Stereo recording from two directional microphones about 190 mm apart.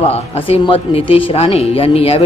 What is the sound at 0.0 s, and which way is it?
Speech, 30° left (ahead or behind).